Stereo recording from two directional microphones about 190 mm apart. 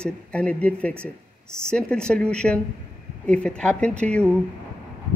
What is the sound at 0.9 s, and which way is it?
Speech, 15° right (ahead or behind).